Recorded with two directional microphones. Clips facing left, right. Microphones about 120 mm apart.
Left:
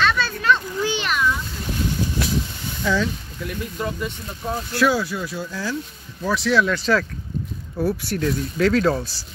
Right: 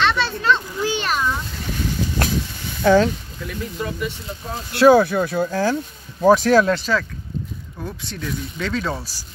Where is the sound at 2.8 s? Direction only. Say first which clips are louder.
Right 8 dB; 55° right (ahead or behind).